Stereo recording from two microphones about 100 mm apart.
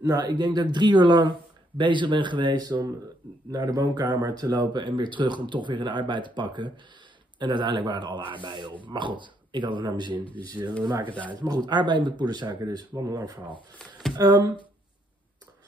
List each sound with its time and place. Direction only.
0.0 s speech: 45° right (ahead or behind)
10.2 s speech: 15° left (ahead or behind)
10.8 s speech: 45° right (ahead or behind)